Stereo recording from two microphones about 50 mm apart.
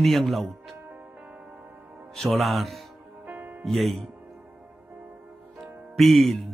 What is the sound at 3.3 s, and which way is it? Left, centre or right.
Music, right.